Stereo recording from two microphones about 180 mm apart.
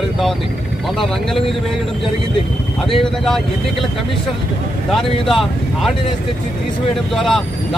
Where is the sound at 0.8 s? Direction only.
Centre (ahead or behind).